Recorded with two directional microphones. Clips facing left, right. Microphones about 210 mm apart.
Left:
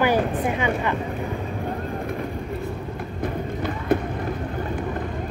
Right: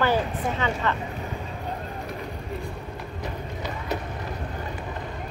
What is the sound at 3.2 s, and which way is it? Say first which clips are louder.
Run: left 8 dB; 55° left (ahead or behind).